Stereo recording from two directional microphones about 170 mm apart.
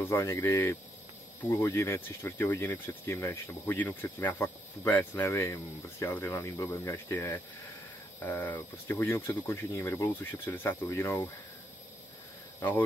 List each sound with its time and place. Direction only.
0.0 s speech: 15° left (ahead or behind)